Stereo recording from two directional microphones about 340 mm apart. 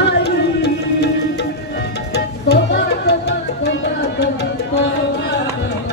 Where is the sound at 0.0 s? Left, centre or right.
Left.